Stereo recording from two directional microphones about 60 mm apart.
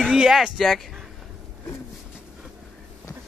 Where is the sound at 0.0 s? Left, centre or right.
Centre.